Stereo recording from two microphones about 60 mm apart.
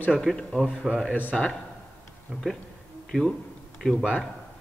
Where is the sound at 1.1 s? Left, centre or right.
Left.